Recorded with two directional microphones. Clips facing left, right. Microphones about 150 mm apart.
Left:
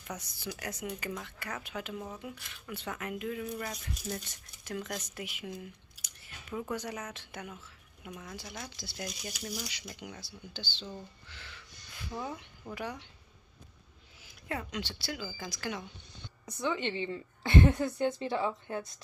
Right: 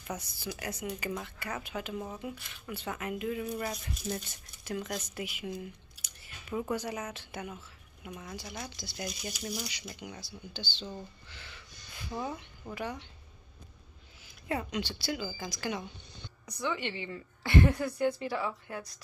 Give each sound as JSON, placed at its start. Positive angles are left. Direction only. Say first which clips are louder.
{"t": 0.1, "sound": "a woman's voice", "louder": "right 2 dB", "side_deg": -5}
{"t": 14.5, "sound": "a woman's voice", "louder": "right 4 dB", "side_deg": -10}
{"t": 16.4, "sound": "a woman's voice", "louder": "left 2 dB", "side_deg": 20}